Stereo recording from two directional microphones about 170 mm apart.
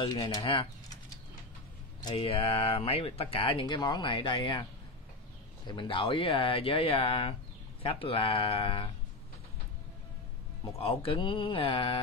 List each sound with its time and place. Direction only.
0.0 s speech: 25° left (ahead or behind)
2.0 s speech: 30° left (ahead or behind)
5.7 s speech: 30° left (ahead or behind)
10.6 s speech: 35° left (ahead or behind)